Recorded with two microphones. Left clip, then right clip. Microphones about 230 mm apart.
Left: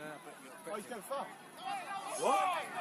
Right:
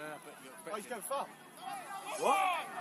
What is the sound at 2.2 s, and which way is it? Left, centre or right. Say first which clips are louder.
Speech: right 1 dB; right.